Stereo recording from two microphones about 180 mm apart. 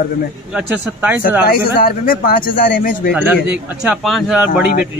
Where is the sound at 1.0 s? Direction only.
10° right (ahead or behind).